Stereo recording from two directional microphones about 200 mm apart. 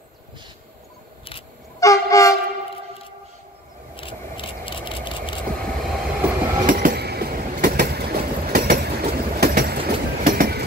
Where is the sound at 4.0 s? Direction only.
25° left (ahead or behind).